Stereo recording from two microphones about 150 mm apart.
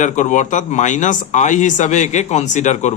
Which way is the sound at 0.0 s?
55° left (ahead or behind).